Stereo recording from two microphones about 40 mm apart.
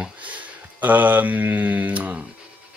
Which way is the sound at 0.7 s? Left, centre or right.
Right.